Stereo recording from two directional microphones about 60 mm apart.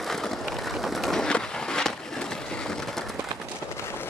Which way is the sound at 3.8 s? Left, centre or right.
Left.